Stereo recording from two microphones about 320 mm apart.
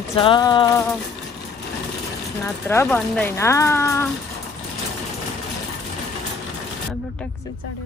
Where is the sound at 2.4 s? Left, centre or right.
Centre.